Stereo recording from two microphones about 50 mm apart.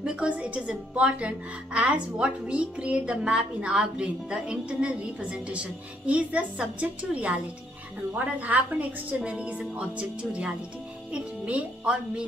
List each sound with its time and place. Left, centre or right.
0.0 s a woman's voice: right